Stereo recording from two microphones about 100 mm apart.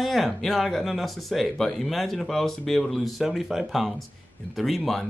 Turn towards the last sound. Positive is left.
turn(degrees=0)  # may be behind; listen again after turning